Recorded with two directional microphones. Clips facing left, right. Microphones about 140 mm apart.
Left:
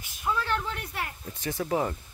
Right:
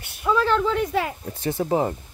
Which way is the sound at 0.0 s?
70° right (ahead or behind).